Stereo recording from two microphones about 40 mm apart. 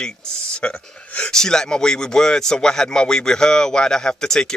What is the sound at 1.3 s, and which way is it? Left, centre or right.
Speech, centre.